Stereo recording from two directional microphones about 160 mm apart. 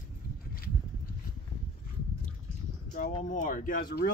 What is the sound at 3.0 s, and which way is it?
Speech, 55° left (ahead or behind).